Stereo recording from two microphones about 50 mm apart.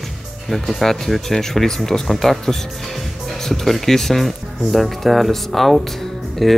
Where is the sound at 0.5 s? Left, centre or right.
Centre.